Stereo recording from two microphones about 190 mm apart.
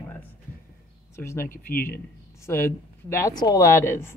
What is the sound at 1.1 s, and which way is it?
Speech, 15° left (ahead or behind).